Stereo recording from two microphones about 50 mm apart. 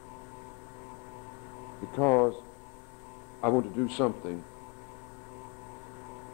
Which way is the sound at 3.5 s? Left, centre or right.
Centre.